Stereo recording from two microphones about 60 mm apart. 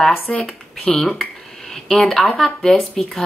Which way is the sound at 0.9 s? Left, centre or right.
Centre.